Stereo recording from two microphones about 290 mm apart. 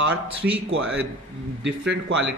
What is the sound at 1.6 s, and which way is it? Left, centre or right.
Speech, right.